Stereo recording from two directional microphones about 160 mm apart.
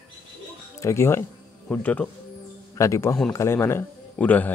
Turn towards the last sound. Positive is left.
turn(degrees=10)  # may be behind; listen again after turning